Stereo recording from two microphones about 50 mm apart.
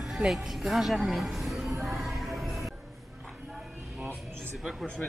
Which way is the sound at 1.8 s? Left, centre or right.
Centre.